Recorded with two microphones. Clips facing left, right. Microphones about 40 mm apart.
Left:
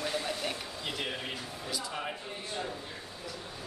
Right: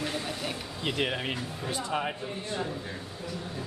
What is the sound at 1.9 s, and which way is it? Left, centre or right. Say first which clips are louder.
Speech: right 6 dB; right.